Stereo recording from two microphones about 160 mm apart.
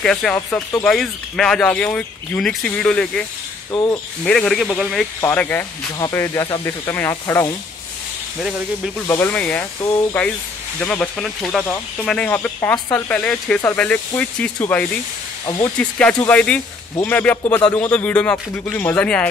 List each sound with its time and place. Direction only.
0.0 s speech: 5° left (ahead or behind)
0.8 s speech: 5° left (ahead or behind)
3.7 s speech: 25° left (ahead or behind)
4.2 s speech: 5° left (ahead or behind)
5.9 s speech: 20° left (ahead or behind)
6.9 s speech: 15° left (ahead or behind)
8.4 s speech: 5° right (ahead or behind)
9.0 s speech: 15° left (ahead or behind)
10.8 s speech: 5° left (ahead or behind)
15.4 s speech: 25° left (ahead or behind)
15.8 s speech: 10° left (ahead or behind)